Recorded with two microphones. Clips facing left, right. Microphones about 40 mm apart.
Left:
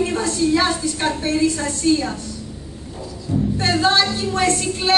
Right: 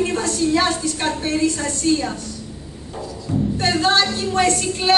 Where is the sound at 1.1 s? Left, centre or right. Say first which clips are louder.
Left 1 dB; centre.